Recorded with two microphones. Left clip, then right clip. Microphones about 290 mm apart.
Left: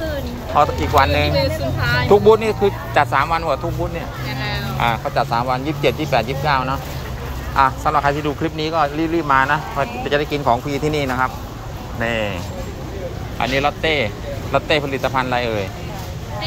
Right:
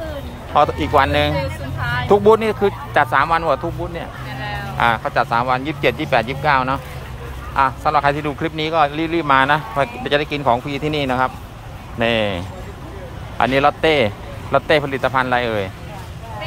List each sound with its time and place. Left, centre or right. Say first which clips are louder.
0.6 s speech: even; right
1.4 s speech: left 5 dB; centre
2.0 s speech: left 1 dB; right
2.3 s speech: even; centre
4.3 s a sound: left 3 dB; centre
5.3 s speech: right 2 dB; centre
13.4 s speech: right 4 dB; centre